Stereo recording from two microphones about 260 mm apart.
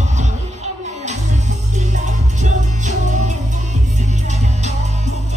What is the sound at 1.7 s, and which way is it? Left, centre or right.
Music, right.